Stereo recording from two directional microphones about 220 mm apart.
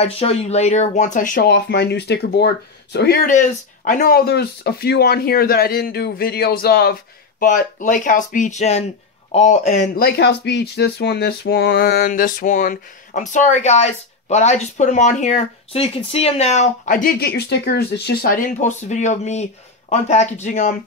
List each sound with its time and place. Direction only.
0.0 s speech: 25° left (ahead or behind)